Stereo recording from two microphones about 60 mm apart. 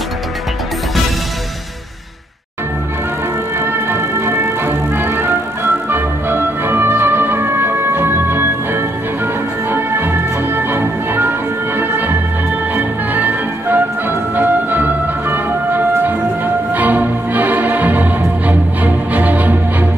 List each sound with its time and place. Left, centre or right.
3.5 s music: right